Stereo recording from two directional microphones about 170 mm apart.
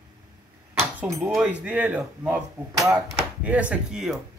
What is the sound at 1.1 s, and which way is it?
Speech, 5° right (ahead or behind).